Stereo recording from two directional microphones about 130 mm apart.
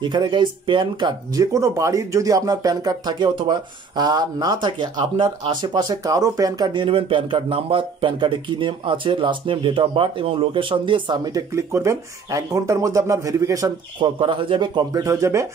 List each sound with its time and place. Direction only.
0.0 s speech: 35° right (ahead or behind)
13.9 s speech: 40° right (ahead or behind); by 15.4 s 20° right (ahead or behind)